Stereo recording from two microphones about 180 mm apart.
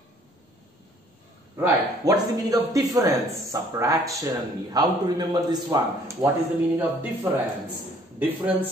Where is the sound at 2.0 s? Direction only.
20° right (ahead or behind).